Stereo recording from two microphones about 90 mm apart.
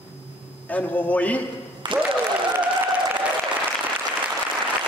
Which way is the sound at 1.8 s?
60° right (ahead or behind).